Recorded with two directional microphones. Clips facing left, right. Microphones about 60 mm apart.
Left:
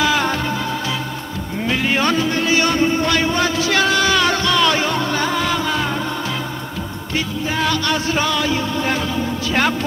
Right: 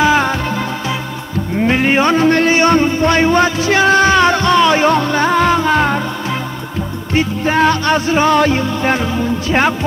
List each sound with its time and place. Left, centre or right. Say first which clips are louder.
0.0 s music: right 5 dB; right
1.6 s music: right 6 dB; right
2.1 s a man's voice: right 8 dB; right
2.5 s music: right 4 dB; right
4.8 s music: right 7 dB; right
7.2 s music: right 8 dB; right
9.5 s music: right 4 dB; right